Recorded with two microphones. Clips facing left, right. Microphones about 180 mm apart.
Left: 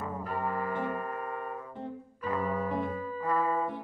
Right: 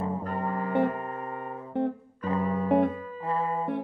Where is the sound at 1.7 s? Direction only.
65° right (ahead or behind).